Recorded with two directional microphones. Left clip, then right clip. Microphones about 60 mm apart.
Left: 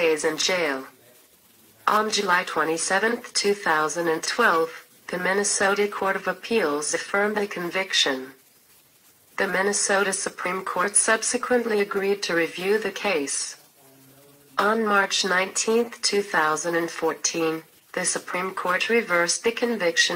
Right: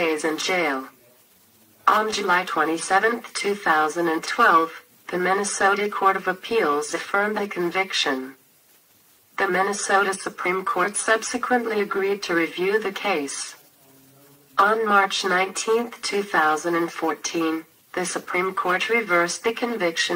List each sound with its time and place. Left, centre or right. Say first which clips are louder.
0.1 s speech: even; left
1.9 s speech: right 2 dB; left
9.3 s a woman's voice: right 2 dB; left
14.5 s speech: right 3 dB; left